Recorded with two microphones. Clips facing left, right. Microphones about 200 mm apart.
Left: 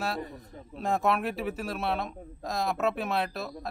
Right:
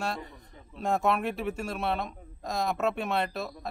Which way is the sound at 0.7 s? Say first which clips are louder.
Even; centre (ahead or behind).